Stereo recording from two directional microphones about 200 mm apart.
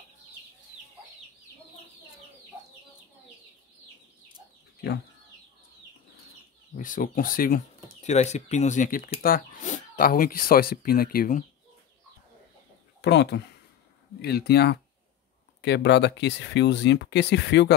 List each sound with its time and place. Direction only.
6.7 s speech: 40° left (ahead or behind)
13.0 s speech: 60° left (ahead or behind)